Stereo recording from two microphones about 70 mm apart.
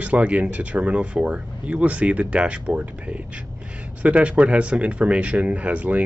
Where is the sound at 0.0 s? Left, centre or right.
Centre.